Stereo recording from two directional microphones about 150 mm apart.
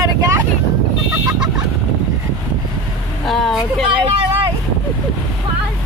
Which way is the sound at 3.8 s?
35° right (ahead or behind).